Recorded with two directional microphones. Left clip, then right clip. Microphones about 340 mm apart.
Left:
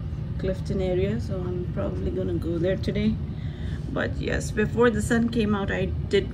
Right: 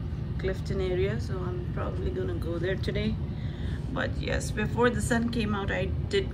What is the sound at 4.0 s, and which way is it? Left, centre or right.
Speech, centre.